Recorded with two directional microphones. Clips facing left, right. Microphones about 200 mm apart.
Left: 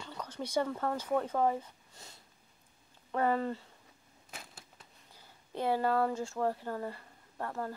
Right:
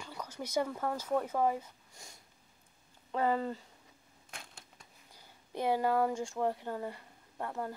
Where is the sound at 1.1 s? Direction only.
10° right (ahead or behind).